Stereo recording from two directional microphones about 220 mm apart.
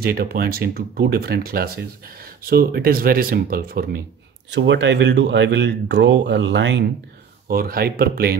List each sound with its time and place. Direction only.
0.0 s speech: 45° right (ahead or behind)
4.6 s speech: 55° right (ahead or behind)
7.4 s speech: 40° right (ahead or behind)